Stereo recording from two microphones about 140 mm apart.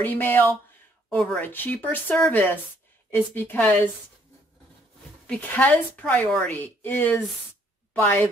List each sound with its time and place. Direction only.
0.0 s speech: 15° left (ahead or behind)
1.1 s speech: 5° left (ahead or behind)
1.4 s speech: 15° left (ahead or behind)
5.2 s a woman's voice: 10° left (ahead or behind)